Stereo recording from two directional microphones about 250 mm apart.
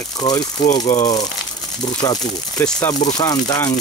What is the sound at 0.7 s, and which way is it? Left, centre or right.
Speech, left.